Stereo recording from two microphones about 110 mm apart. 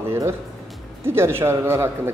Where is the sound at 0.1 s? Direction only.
25° right (ahead or behind).